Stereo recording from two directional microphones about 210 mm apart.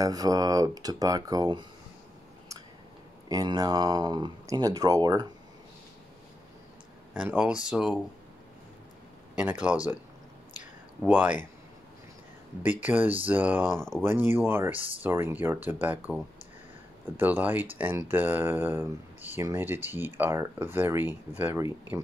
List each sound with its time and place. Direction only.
0.0 s speech: 15° right (ahead or behind)
3.3 s speech: 15° right (ahead or behind)
7.2 s speech: 5° right (ahead or behind)
9.3 s speech: 5° right (ahead or behind)
11.1 s speech: 10° right (ahead or behind)
12.6 s speech: 10° right (ahead or behind)
17.2 s speech: 10° right (ahead or behind)